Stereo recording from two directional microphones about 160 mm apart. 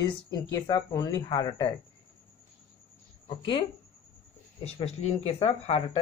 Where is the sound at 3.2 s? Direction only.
30° left (ahead or behind).